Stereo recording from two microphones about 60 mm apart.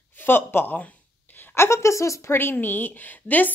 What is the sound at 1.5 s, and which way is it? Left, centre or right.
Speech, left.